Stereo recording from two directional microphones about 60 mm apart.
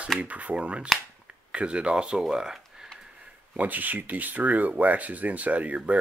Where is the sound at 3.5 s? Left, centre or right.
Right.